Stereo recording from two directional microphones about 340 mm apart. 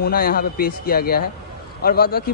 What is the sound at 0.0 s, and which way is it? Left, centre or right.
Speech, left.